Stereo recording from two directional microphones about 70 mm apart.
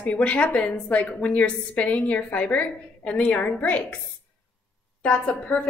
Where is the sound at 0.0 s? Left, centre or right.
Centre.